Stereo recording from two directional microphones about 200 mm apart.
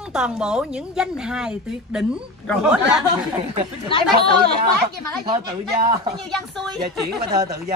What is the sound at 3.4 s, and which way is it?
Speech, 30° right (ahead or behind).